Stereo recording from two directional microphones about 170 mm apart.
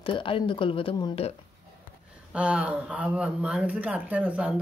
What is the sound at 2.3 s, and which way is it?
Speech, 5° right (ahead or behind).